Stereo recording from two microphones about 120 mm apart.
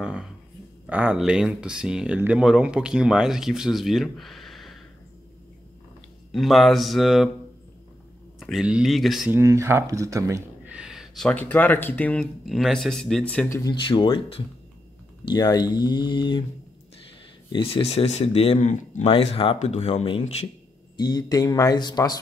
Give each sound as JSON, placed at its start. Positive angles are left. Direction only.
{"t": 0.0, "sound": "a sound", "side_deg": -5}
{"t": 0.8, "sound": "speech", "side_deg": -10}
{"t": 6.3, "sound": "speech", "side_deg": 0}
{"t": 8.4, "sound": "speech", "side_deg": -5}
{"t": 9.3, "sound": "speech", "side_deg": -25}
{"t": 10.7, "sound": "a sound", "side_deg": -5}
{"t": 11.2, "sound": "speech", "side_deg": 15}
{"t": 12.4, "sound": "speech", "side_deg": 0}
{"t": 13.7, "sound": "speech", "side_deg": 40}
{"t": 15.2, "sound": "speech", "side_deg": 35}
{"t": 17.5, "sound": "speech", "side_deg": 50}
{"t": 19.6, "sound": "speech", "side_deg": 65}
{"t": 20.9, "sound": "speech", "side_deg": 35}